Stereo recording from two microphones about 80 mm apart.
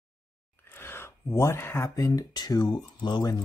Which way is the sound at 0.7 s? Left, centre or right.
Left.